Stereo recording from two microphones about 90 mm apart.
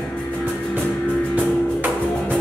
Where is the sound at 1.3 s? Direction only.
20° right (ahead or behind).